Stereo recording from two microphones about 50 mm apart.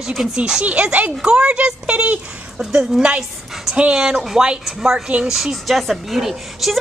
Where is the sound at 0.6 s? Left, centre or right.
Right.